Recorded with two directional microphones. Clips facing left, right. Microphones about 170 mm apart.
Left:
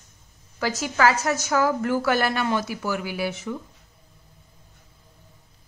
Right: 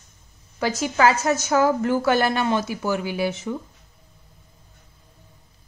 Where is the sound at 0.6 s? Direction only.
20° right (ahead or behind).